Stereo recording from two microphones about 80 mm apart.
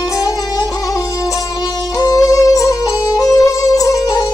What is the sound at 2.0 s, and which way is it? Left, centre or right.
Music, left.